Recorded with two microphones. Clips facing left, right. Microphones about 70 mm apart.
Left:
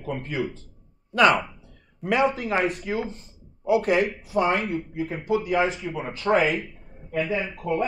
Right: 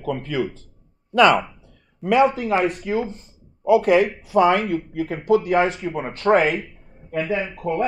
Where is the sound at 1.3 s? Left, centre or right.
Centre.